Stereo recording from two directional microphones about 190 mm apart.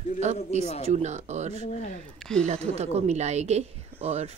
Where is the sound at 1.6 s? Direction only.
40° left (ahead or behind).